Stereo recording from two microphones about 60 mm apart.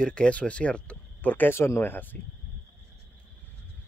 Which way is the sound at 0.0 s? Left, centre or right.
Centre.